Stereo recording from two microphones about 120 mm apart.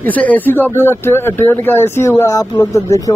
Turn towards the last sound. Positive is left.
turn(degrees=25)  # may be behind; listen again after turning